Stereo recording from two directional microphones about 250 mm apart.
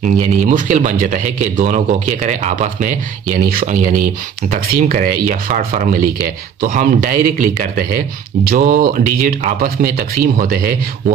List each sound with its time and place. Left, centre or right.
0.0 s a man's voice: right